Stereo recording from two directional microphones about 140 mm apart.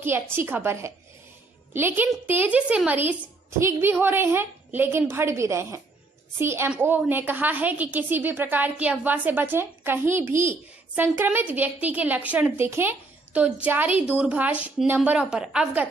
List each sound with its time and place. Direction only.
0.0 s a woman's voice: 15° right (ahead or behind)